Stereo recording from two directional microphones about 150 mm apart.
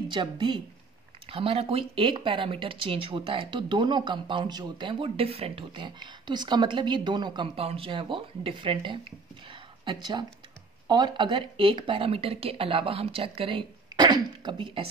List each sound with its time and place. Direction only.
0.1 s speech: 35° right (ahead or behind)
10.9 s speech: 30° right (ahead or behind)